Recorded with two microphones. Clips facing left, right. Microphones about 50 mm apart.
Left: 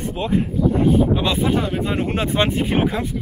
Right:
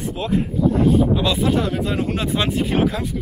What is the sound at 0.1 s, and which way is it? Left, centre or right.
Speech, centre.